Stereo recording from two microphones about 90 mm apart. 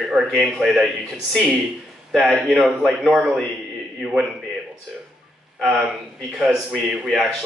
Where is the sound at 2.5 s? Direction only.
Centre (ahead or behind).